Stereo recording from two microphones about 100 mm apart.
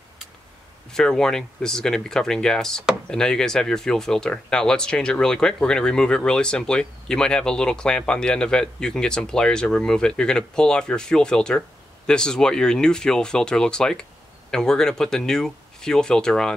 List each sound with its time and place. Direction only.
0.9 s speech: 5° left (ahead or behind)